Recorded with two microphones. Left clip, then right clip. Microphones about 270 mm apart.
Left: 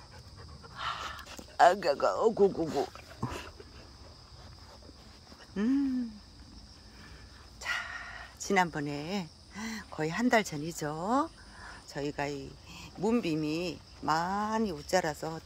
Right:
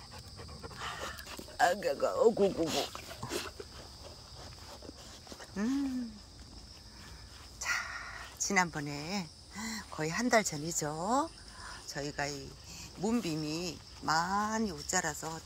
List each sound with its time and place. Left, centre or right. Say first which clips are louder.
0.7 s dog: left 4 dB; centre
1.6 s speech: left 6 dB; centre
2.6 s a sound: left 1 dB; right
5.6 s speech: left 4 dB; left
7.5 s dog: even; left
9.6 s speech: left 2 dB; centre